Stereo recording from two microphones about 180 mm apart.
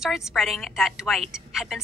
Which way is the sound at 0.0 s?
Centre (ahead or behind).